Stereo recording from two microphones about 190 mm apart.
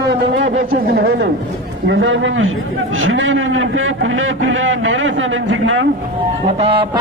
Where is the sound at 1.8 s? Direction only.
80° right.